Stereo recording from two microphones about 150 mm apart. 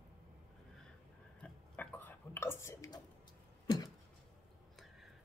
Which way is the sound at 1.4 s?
10° left (ahead or behind).